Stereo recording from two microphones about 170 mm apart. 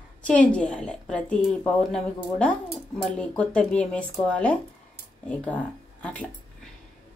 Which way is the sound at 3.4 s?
5° left (ahead or behind).